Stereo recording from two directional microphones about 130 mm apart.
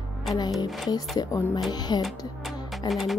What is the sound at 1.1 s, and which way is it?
Speech, 25° left (ahead or behind).